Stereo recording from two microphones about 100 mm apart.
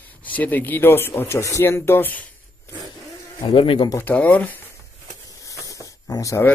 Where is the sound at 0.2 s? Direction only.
15° left (ahead or behind).